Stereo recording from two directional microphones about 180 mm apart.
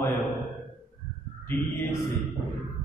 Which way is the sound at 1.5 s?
10° left (ahead or behind).